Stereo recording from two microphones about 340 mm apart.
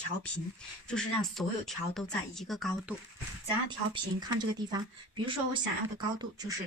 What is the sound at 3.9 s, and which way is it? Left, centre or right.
Speech, centre.